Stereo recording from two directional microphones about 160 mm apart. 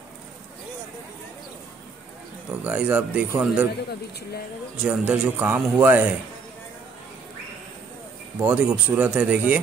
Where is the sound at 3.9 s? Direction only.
90° left.